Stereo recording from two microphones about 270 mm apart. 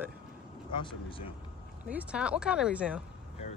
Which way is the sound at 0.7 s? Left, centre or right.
Centre.